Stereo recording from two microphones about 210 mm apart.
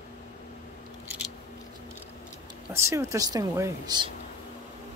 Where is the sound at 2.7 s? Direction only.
15° right (ahead or behind).